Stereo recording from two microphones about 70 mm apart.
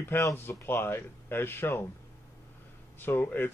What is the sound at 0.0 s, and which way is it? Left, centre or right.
Speech, left.